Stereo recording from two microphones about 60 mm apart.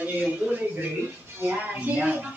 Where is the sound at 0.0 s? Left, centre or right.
Right.